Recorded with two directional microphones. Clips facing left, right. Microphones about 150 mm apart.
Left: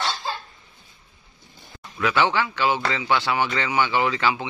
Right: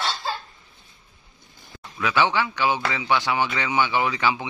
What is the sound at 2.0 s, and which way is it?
Speech, 15° right (ahead or behind).